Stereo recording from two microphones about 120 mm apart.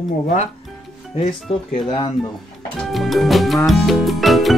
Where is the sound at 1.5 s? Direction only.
55° left (ahead or behind).